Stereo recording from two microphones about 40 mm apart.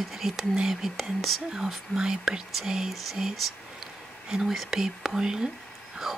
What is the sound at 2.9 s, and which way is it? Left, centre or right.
Speech, centre.